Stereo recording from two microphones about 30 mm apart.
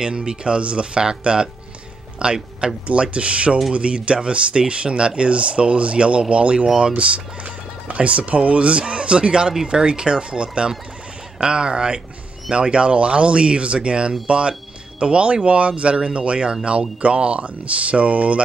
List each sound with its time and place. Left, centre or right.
0.0 s speech: right
2.9 s speech: right